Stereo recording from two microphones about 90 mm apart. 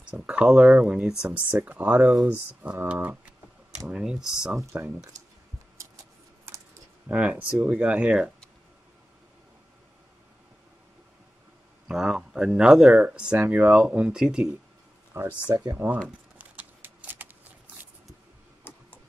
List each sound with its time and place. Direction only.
0.1 s speech: 15° right (ahead or behind)
2.0 s speech: 5° right (ahead or behind)
2.2 s speech: 15° right (ahead or behind)
3.9 s speech: 5° right (ahead or behind)
6.4 s typing: 30° right (ahead or behind)
7.1 s speech: 15° right (ahead or behind)
11.9 s speech: 5° right (ahead or behind)
15.1 s speech: 35° right (ahead or behind)
16.3 s a sound: 15° right (ahead or behind)
18.7 s a sound: 25° left (ahead or behind)